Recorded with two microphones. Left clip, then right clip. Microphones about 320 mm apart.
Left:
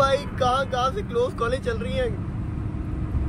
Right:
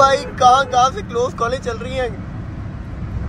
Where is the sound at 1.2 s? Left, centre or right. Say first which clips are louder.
Right 6 dB; centre.